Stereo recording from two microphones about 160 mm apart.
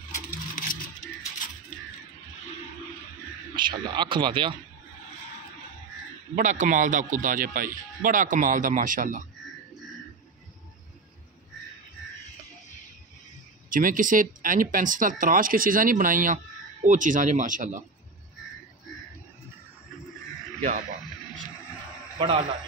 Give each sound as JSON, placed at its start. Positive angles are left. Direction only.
{"t": 0.1, "sound": "a sound", "side_deg": 55}
{"t": 3.5, "sound": "speech", "side_deg": -30}
{"t": 6.3, "sound": "a man's voice", "side_deg": -50}
{"t": 13.7, "sound": "a man's voice", "side_deg": -60}